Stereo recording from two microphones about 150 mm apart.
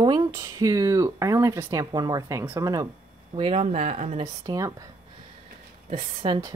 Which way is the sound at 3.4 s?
40° right (ahead or behind).